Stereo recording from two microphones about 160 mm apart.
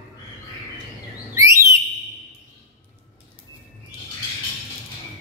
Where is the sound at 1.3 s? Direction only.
20° right (ahead or behind).